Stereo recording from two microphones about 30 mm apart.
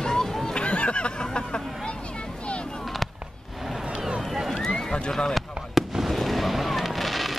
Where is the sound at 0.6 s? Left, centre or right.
Left.